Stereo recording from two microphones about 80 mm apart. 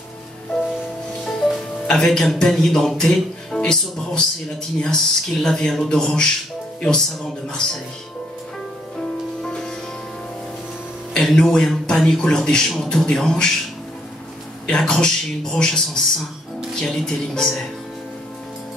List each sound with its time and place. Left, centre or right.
1.9 s speech: centre
8.9 s music: centre
11.1 s speech: centre
14.7 s speech: centre